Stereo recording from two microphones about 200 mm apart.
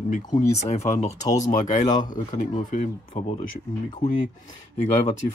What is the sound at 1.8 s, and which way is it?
Speech, 20° left (ahead or behind).